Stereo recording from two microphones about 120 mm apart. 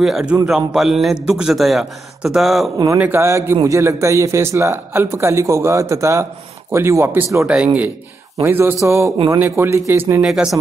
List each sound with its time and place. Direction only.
0.0 s a man's voice: 5° right (ahead or behind)
3.0 s a man's voice: 20° right (ahead or behind)
10.2 s a man's voice: 5° right (ahead or behind)